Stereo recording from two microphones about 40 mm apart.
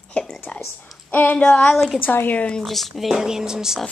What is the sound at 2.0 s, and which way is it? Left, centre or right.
Speech, left.